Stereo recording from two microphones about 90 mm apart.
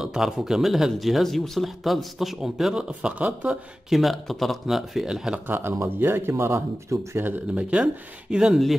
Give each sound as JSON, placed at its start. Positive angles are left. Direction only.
{"t": 0.0, "sound": "speech", "side_deg": -5}
{"t": 3.9, "sound": "speech", "side_deg": 0}
{"t": 5.5, "sound": "speech", "side_deg": -25}
{"t": 7.5, "sound": "speech", "side_deg": -10}